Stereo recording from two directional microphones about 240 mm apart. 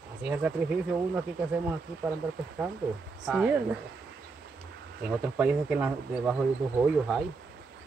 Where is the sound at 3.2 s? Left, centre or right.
Centre.